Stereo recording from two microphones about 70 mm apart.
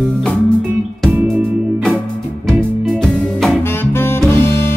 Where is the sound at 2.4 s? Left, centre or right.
Centre.